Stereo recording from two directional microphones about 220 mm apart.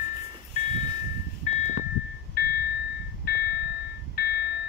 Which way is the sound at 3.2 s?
45° left (ahead or behind).